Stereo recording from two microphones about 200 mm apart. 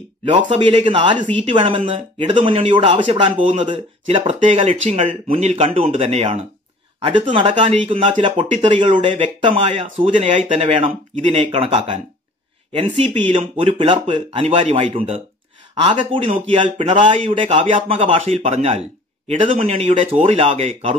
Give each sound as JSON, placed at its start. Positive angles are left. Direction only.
{"t": 0.2, "sound": "speech", "side_deg": -25}
{"t": 1.1, "sound": "speech", "side_deg": -35}
{"t": 1.5, "sound": "speech", "side_deg": -25}
{"t": 13.2, "sound": "speech", "side_deg": -30}